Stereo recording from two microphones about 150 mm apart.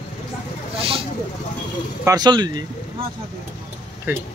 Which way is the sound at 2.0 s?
25° right (ahead or behind).